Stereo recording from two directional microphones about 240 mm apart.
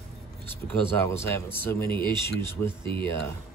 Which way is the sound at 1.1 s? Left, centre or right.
Centre.